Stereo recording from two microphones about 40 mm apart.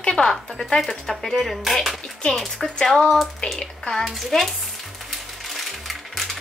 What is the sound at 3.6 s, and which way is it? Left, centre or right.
Speech, centre.